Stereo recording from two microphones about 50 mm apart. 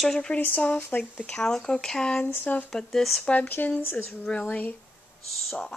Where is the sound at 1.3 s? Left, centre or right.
Centre.